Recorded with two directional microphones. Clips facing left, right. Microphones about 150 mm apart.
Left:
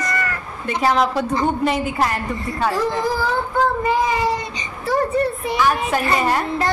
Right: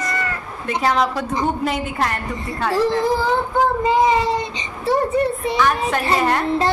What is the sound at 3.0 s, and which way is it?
Child singing, 20° right (ahead or behind).